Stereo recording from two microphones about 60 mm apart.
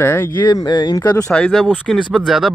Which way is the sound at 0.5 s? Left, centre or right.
Left.